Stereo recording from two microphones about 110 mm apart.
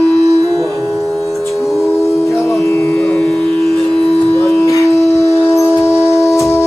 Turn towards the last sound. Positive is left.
turn(degrees=25)  # may be behind; listen again after turning